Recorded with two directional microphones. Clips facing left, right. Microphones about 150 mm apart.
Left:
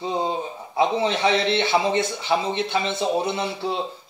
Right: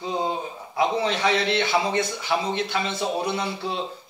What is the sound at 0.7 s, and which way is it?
A man's voice, 25° left (ahead or behind).